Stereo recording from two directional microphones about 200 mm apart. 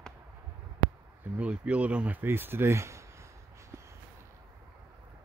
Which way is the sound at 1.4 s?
5° right (ahead or behind).